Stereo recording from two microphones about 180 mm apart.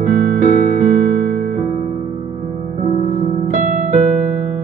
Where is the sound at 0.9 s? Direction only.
45° right (ahead or behind).